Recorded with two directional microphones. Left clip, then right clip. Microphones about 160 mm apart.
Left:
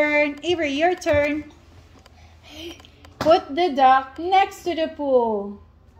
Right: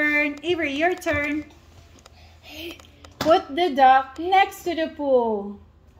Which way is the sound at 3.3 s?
40° left (ahead or behind).